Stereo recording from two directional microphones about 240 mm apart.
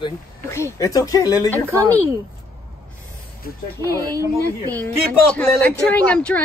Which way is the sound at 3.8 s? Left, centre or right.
Centre.